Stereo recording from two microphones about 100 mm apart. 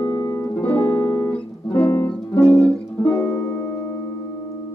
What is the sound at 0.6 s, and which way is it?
Music, 20° left (ahead or behind).